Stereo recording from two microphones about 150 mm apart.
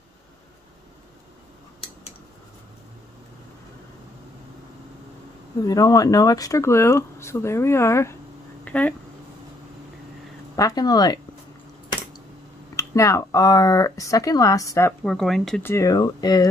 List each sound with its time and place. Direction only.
5.7 s speech: 25° left (ahead or behind)
8.6 s a sound: 10° left (ahead or behind)
10.5 s speech: 25° left (ahead or behind)
12.7 s speech: 20° left (ahead or behind)
15.0 s speech: centre (ahead or behind)
15.6 s speech: 20° left (ahead or behind)